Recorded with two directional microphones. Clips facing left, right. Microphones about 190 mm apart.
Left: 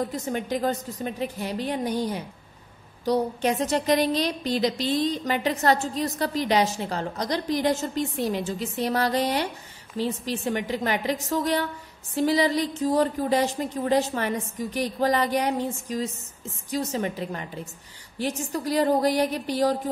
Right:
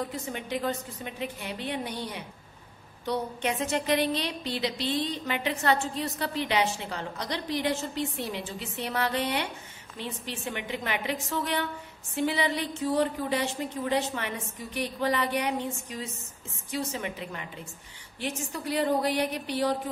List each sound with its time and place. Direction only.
0.1 s a woman's voice: 40° left (ahead or behind)